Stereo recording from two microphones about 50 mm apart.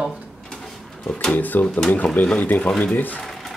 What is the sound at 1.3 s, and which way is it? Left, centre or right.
Speech, left.